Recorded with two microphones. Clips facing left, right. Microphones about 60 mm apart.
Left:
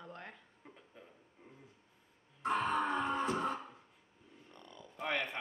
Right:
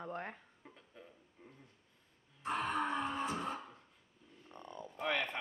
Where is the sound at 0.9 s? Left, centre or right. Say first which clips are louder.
Right 2 dB; centre.